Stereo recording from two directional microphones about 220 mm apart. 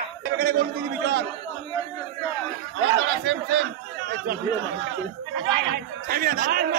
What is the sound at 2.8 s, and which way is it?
Speech, 55° right (ahead or behind).